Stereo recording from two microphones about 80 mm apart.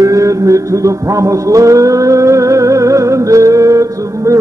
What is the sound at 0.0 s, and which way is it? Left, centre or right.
Music, right.